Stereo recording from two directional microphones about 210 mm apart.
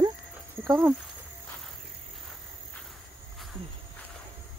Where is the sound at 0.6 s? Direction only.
10° right (ahead or behind).